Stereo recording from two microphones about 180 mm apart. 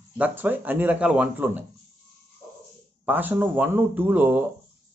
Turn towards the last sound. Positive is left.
turn(degrees=-10)  # may be behind; listen again after turning